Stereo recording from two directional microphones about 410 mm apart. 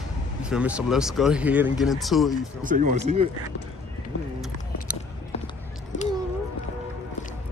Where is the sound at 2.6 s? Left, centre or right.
Centre.